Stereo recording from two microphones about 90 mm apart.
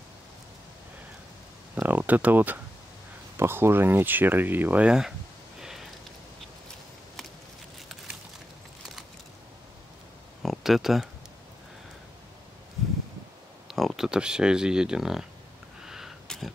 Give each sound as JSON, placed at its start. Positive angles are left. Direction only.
{"t": 1.8, "sound": "speech", "side_deg": -20}
{"t": 5.6, "sound": "sniff", "side_deg": -5}
{"t": 10.4, "sound": "a sound", "side_deg": 0}
{"t": 13.7, "sound": "speech", "side_deg": 0}
{"t": 15.8, "sound": "sniff", "side_deg": -5}
{"t": 16.3, "sound": "a sound", "side_deg": 0}